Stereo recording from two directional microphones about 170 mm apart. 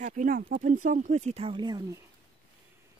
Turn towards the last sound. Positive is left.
turn(degrees=-25)  # may be behind; listen again after turning